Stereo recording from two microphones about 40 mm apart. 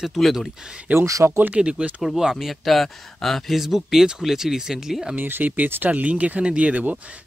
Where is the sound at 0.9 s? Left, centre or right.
Right.